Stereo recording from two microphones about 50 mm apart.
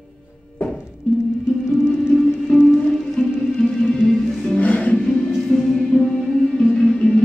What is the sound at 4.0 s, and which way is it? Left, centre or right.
Music, left.